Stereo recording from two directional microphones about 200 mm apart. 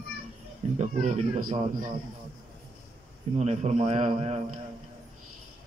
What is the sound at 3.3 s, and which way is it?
Speech, 35° right (ahead or behind).